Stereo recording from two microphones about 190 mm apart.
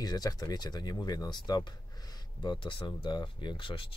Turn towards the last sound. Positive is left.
turn(degrees=25)  # may be behind; listen again after turning